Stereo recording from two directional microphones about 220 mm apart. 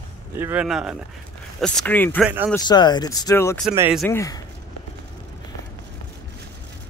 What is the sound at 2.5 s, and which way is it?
Speech, 20° left (ahead or behind).